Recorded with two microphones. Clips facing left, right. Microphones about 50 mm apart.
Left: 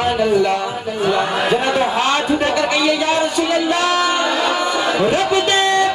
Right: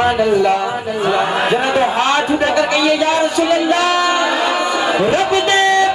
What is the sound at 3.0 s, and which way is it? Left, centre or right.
Speech, centre.